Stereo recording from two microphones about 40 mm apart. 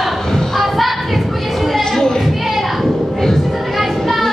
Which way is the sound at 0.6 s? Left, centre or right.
Centre.